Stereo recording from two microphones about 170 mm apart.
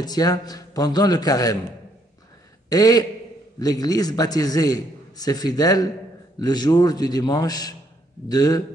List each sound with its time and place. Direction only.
0.0 s a man's voice: 25° left (ahead or behind)
2.7 s a man's voice: 20° left (ahead or behind)